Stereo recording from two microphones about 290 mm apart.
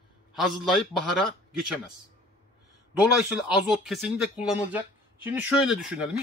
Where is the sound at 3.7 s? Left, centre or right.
Centre.